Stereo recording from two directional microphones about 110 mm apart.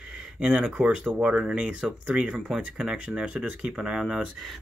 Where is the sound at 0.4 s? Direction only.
10° right (ahead or behind).